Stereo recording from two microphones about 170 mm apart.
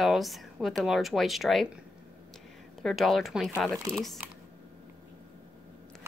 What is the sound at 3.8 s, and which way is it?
Speech, 20° right (ahead or behind).